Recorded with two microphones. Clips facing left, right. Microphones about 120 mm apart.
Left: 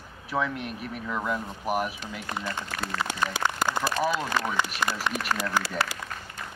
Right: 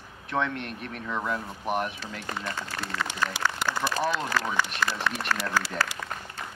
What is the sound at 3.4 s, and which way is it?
A man's voice, 20° left (ahead or behind).